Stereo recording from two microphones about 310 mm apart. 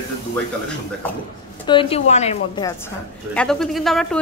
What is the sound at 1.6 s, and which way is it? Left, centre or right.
A woman's voice, centre.